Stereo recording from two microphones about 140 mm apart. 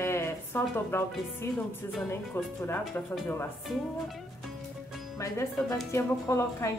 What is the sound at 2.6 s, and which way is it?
Speech, 15° left (ahead or behind).